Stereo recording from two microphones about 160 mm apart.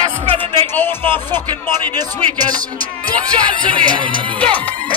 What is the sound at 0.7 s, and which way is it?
Music, 15° left (ahead or behind).